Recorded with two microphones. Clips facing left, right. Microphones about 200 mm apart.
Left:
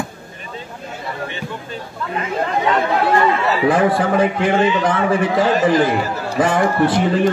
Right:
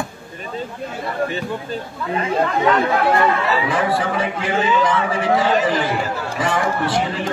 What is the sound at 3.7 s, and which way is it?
A man's voice, 50° left (ahead or behind).